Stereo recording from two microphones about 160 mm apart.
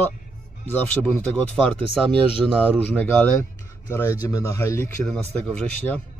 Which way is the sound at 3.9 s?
15° left (ahead or behind).